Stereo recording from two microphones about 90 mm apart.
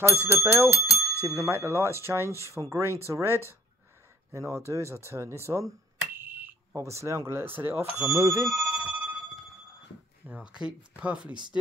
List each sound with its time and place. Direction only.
0.0 s speech: 25° right (ahead or behind)
8.1 s speech: 30° right (ahead or behind)
8.5 s bicycle bell: 5° right (ahead or behind)
10.2 s speech: 10° right (ahead or behind)